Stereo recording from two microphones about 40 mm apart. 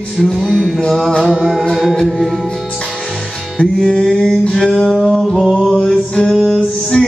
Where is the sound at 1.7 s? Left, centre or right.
Centre.